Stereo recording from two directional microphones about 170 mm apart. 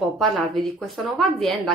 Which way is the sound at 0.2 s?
Centre (ahead or behind).